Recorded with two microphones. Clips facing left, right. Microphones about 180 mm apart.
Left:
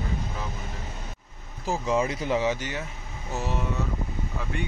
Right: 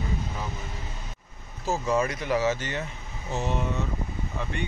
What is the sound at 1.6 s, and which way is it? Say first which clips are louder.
Speech: even; 15° left (ahead or behind).